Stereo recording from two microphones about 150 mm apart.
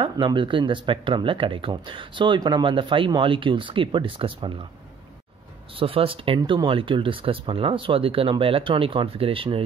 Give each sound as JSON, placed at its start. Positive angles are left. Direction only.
{"t": 0.0, "sound": "speech", "side_deg": -35}
{"t": 5.8, "sound": "speech", "side_deg": -35}